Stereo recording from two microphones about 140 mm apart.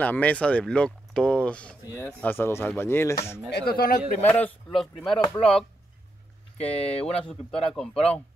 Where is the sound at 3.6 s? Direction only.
90° left.